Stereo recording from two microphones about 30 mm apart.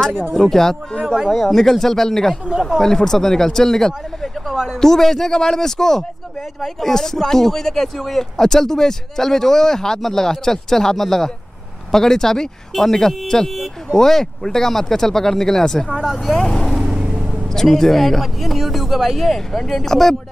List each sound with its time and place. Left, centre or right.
0.0 s speech: centre
15.9 s speech: centre
16.3 s speech: centre
16.8 s vehicle: right
17.5 s speech: centre